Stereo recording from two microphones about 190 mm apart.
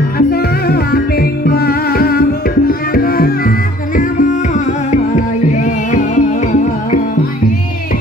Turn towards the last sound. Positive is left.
turn(degrees=40)  # may be behind; listen again after turning